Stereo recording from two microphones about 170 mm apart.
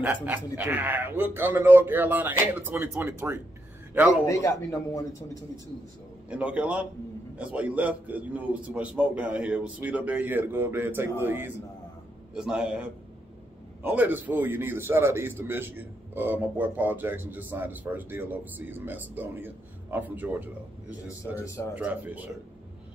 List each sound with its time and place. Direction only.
0.0 s a man's voice: 10° right (ahead or behind)
4.3 s a man's voice: 15° left (ahead or behind)
6.2 s a man's voice: 5° right (ahead or behind)
21.7 s a man's voice: 10° right (ahead or behind)